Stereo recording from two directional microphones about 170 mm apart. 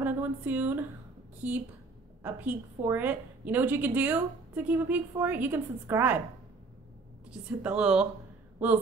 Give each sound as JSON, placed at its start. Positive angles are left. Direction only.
{"t": 0.0, "sound": "a woman's voice", "side_deg": -10}
{"t": 7.2, "sound": "speech", "side_deg": -5}